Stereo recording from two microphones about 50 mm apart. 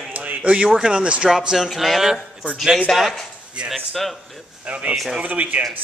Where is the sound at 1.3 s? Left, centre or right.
Centre.